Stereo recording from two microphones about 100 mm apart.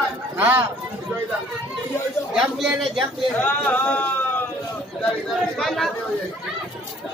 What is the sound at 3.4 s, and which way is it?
Speech, 10° left (ahead or behind).